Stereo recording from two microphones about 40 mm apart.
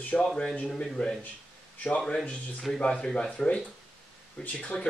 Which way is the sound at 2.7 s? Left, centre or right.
Left.